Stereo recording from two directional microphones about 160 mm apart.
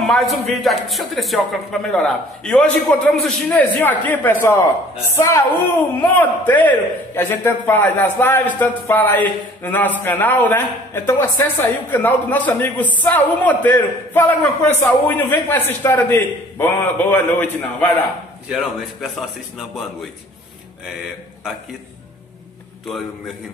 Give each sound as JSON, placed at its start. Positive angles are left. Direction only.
{"t": 0.0, "sound": "a man's voice", "side_deg": 0}
{"t": 18.5, "sound": "speech", "side_deg": 0}